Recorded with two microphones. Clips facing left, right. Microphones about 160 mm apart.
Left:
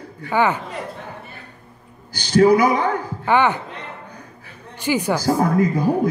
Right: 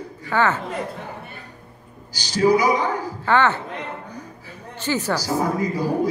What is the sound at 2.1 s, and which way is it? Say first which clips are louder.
Clapping: left 4 dB; 55° left (ahead or behind).